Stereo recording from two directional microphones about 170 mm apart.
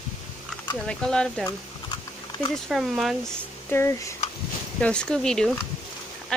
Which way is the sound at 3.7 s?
15° left (ahead or behind).